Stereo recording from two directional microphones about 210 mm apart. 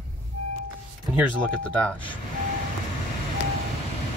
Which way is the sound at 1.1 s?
5° left (ahead or behind).